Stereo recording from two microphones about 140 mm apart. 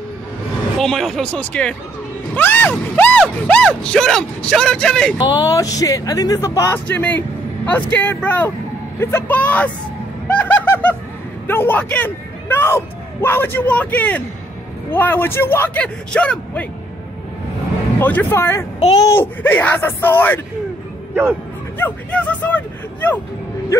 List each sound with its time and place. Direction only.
0.7 s speech: 5° left (ahead or behind)
5.1 s speech: 30° left (ahead or behind)
6.9 s speech: 10° left (ahead or behind)
10.2 s a sound: 10° left (ahead or behind)
11.4 s speech: 15° left (ahead or behind)
17.9 s speech: 15° left (ahead or behind)
21.1 s speech: 15° right (ahead or behind)
21.7 s a sound: 10° left (ahead or behind)